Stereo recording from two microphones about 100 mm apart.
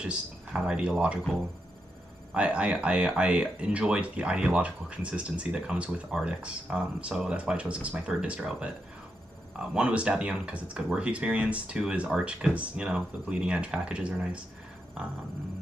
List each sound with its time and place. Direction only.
0.0 s speech: 10° right (ahead or behind)
2.3 s speech: 10° right (ahead or behind)